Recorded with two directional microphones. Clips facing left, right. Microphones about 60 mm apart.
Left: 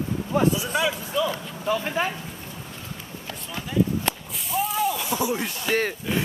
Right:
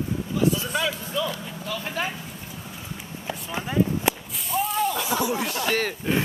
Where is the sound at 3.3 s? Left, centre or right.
Centre.